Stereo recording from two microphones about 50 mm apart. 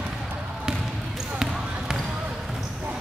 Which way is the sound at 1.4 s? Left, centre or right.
Centre.